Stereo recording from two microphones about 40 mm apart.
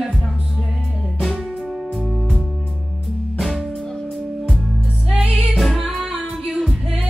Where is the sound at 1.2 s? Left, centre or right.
Centre.